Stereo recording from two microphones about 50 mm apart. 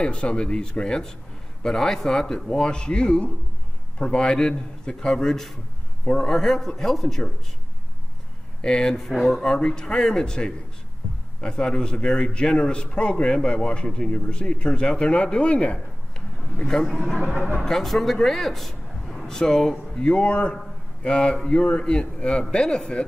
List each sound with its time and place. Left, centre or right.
0.0 s a man's voice: left
8.5 s a man's voice: centre
16.6 s a man's voice: centre